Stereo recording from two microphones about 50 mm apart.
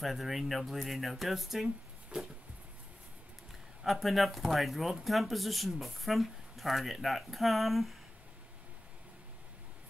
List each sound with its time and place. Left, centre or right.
0.0 s speech: centre
2.1 s a sound: centre
3.8 s speech: centre